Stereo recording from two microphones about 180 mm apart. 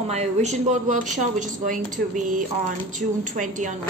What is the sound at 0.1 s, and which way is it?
A woman's voice, 40° right (ahead or behind).